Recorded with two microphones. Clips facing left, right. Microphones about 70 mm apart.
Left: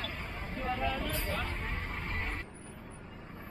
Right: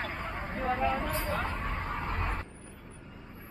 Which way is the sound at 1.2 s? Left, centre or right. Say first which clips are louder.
Right 4 dB; right.